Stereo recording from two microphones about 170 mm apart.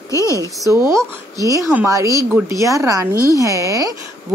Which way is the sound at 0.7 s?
20° right (ahead or behind).